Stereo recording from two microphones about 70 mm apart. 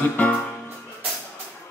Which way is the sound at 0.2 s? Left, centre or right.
Centre.